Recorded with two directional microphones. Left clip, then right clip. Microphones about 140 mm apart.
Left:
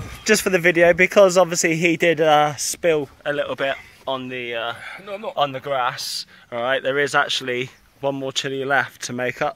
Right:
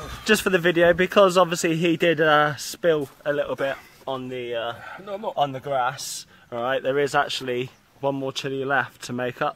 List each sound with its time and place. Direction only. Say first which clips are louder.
0.3 s speech: left 3 dB; 5° left (ahead or behind)
5.0 s speech: even; 55° right (ahead or behind)
5.3 s speech: left 2 dB; 5° left (ahead or behind)